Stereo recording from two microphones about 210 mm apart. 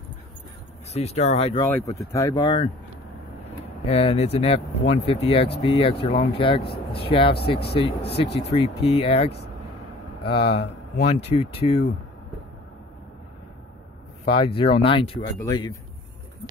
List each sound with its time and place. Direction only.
0.9 s speech: 30° left (ahead or behind)
1.7 s speech: 15° left (ahead or behind)
3.8 s speech: 30° left (ahead or behind)
14.2 s speech: 25° left (ahead or behind)